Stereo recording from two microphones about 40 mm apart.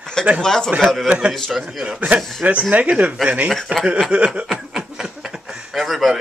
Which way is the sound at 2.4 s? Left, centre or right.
Right.